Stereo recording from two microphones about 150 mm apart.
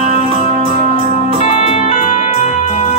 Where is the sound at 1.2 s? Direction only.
40° left (ahead or behind).